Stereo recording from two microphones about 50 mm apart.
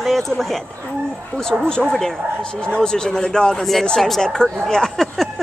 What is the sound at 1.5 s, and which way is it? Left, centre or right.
Speech, right.